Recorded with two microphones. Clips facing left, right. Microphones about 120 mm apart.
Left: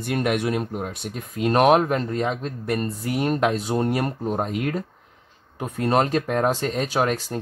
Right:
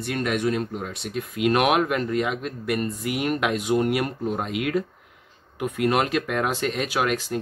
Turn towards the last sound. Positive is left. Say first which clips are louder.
# left 1 dB
turn(degrees=35)  # may be behind; listen again after turning